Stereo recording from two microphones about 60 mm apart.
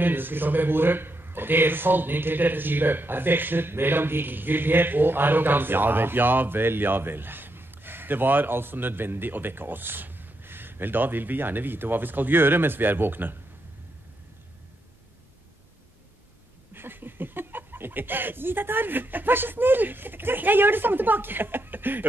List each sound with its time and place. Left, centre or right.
0.0 s a man's voice: right
16.7 s speech: right